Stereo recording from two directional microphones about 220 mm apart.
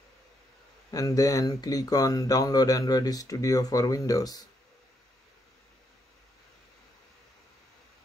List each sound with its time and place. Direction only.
0.9 s speech: 15° left (ahead or behind)